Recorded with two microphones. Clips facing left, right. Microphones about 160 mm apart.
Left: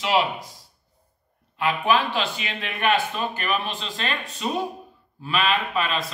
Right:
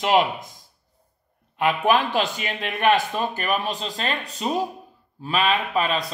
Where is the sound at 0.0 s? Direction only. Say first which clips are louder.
Right 3 dB; 50° right (ahead or behind).